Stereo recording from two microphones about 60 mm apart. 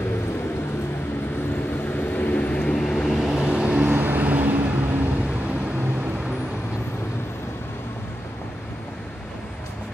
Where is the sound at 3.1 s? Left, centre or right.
Centre.